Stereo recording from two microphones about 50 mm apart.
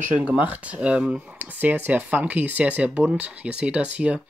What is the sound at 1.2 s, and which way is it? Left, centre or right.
Speech, right.